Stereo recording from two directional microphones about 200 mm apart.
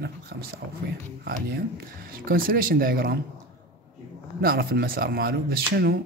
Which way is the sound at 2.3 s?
45° right (ahead or behind).